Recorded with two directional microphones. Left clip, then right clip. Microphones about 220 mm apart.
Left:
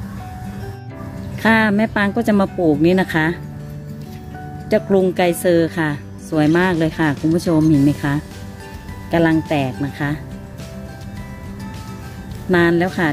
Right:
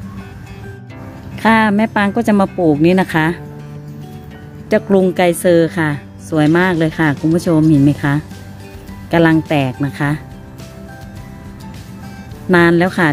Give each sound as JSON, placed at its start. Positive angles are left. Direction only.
{"t": 1.3, "sound": "a woman's voice", "side_deg": -20}
{"t": 4.6, "sound": "a woman's voice", "side_deg": -25}
{"t": 12.4, "sound": "a woman's voice", "side_deg": -25}